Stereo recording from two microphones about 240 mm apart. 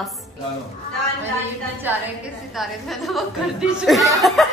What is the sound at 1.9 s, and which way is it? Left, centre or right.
A woman's voice, centre.